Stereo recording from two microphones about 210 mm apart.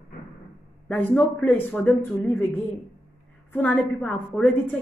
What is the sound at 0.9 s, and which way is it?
Speech, 10° left (ahead or behind).